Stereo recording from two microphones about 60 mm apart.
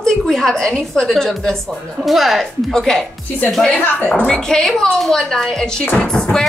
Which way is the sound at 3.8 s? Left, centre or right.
Left.